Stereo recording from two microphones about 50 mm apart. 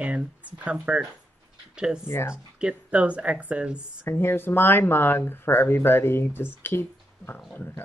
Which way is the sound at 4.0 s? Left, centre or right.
Left.